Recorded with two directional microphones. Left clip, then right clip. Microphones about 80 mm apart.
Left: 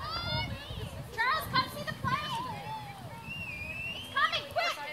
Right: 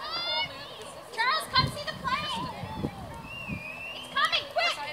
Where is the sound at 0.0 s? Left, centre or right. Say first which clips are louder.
Right 5 dB; right.